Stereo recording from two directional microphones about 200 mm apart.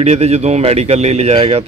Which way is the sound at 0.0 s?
30° right (ahead or behind).